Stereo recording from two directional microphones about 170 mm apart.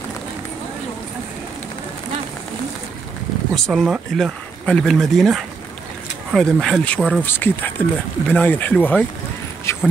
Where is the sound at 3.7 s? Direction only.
Centre (ahead or behind).